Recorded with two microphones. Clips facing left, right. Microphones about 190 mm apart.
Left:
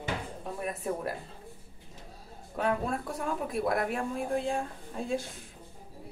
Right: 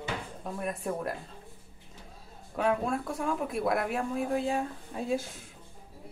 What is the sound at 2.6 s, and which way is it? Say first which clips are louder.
Speech: right 2 dB; centre (ahead or behind).